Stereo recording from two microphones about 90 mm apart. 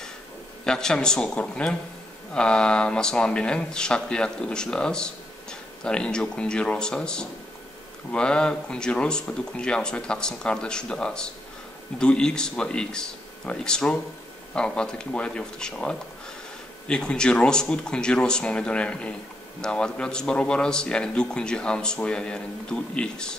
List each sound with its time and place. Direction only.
0.7 s speech: 5° left (ahead or behind)